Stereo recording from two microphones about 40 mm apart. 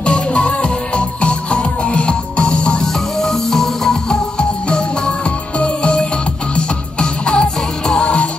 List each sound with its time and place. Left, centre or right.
0.0 s music: left
3.2 s music: centre
4.4 s music: left